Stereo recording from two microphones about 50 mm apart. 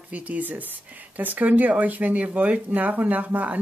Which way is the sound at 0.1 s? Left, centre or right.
Right.